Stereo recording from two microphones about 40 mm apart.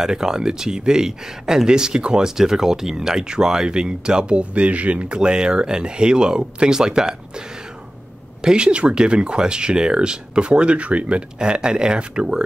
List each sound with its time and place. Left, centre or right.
0.0 s speech: centre
8.4 s speech: right